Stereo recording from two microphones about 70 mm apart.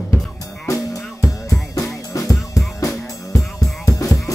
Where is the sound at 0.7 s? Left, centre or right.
Left.